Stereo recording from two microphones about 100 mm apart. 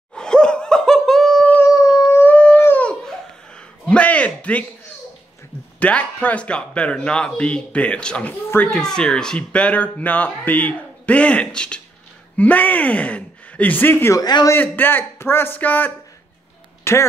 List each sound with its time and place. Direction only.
0.1 s laughter: 10° left (ahead or behind)
1.7 s howl: 35° left (ahead or behind)
2.1 s howl: 15° left (ahead or behind)
2.6 s dog: 20° left (ahead or behind)
2.9 s laughter: 5° left (ahead or behind)
5.8 s speech: 15° left (ahead or behind)
8.6 s speech: 5° left (ahead or behind)
14.1 s a man's voice: 40° left (ahead or behind)
14.5 s speech: 20° left (ahead or behind)